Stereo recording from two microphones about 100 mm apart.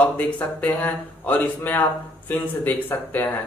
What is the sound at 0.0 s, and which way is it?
Speech, 15° left (ahead or behind).